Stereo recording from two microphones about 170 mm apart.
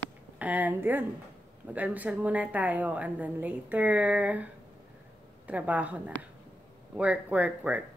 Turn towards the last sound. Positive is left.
turn(degrees=-10)  # may be behind; listen again after turning